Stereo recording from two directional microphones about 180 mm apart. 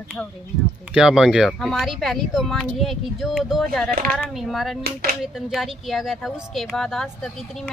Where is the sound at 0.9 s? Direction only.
5° right (ahead or behind).